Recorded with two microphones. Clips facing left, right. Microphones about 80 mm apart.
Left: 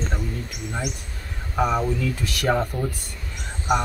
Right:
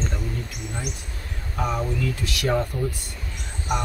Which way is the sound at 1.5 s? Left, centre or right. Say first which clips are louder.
Left 5 dB; left.